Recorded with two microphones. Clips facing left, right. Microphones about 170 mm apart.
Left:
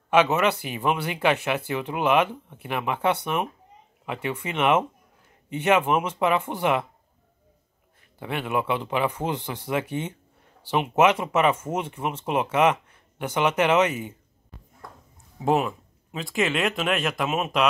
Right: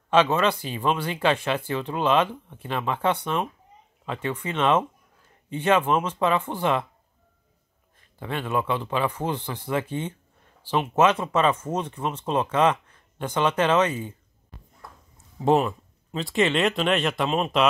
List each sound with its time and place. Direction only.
0.1 s speech: 10° left (ahead or behind)
8.2 s speech: 15° left (ahead or behind)
15.3 s speech: 5° left (ahead or behind)